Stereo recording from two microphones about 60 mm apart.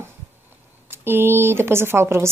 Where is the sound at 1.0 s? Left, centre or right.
Right.